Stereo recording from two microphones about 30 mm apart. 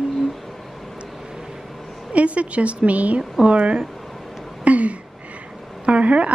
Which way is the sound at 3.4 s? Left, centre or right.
Right.